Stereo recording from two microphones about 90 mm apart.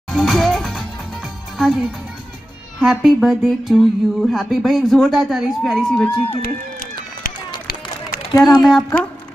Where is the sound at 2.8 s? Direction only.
10° right (ahead or behind); by 6.4 s 10° left (ahead or behind).